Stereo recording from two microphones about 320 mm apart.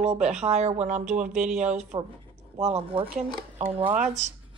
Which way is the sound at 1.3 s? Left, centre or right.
Centre.